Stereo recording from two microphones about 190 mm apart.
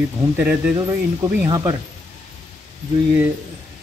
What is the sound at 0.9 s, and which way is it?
Speech, 15° right (ahead or behind).